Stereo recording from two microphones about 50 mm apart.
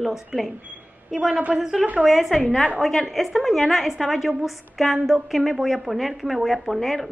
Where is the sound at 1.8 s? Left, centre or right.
Right.